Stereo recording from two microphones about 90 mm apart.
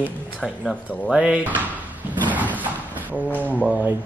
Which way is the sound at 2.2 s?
20° right (ahead or behind).